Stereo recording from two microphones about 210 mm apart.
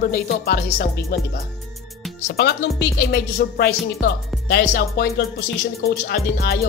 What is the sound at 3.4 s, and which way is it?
Speech, 45° left (ahead or behind).